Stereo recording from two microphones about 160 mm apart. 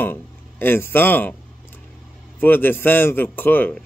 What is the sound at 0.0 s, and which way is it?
A man's voice, 10° left (ahead or behind).